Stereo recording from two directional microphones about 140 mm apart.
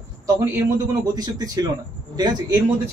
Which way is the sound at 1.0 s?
30° right (ahead or behind).